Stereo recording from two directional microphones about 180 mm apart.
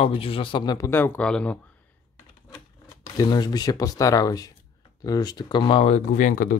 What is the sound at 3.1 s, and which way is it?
Speech, 25° left (ahead or behind).